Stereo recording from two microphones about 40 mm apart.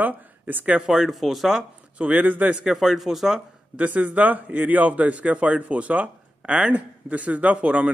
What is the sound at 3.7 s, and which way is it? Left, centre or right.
Speech, right.